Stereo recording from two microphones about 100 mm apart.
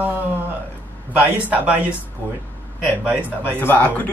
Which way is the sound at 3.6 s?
15° left (ahead or behind).